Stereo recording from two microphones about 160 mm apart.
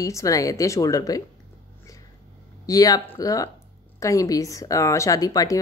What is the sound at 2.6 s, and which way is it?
Speech, 20° left (ahead or behind).